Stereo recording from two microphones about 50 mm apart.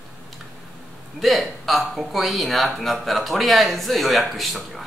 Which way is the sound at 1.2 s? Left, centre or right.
Centre.